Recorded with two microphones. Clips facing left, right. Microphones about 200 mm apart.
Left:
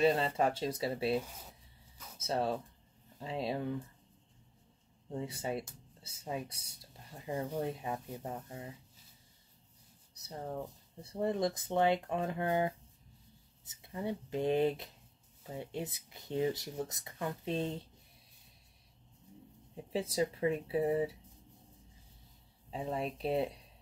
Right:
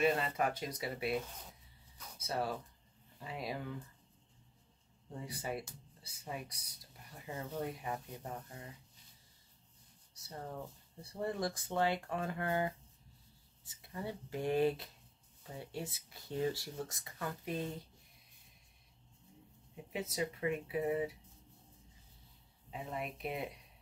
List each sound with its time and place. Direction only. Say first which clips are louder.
0.0 s speech: left 4 dB; 30° left (ahead or behind)
1.2 s speech: even; 5° left (ahead or behind)
2.1 s speech: left 4 dB; 25° left (ahead or behind)
5.1 s speech: left 4 dB; 25° left (ahead or behind)
7.6 s speech: left 3 dB; 25° left (ahead or behind)
10.1 s speech: left 4 dB; 20° left (ahead or behind)
19.7 s speech: left 5 dB; 30° left (ahead or behind)
22.7 s speech: left 5 dB; 30° left (ahead or behind)